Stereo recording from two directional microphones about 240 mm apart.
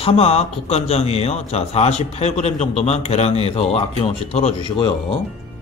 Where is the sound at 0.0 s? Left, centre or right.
Left.